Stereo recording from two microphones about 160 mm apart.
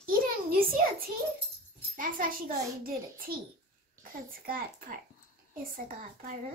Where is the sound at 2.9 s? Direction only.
65° right (ahead or behind).